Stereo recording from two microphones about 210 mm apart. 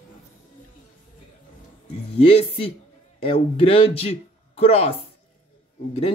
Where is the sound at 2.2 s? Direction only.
25° left (ahead or behind).